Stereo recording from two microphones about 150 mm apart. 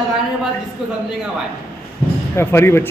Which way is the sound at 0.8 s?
5° right (ahead or behind).